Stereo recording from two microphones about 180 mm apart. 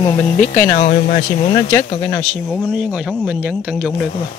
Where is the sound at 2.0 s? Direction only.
10° left (ahead or behind).